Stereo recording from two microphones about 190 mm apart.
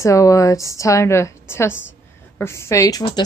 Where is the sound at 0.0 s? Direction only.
15° left (ahead or behind).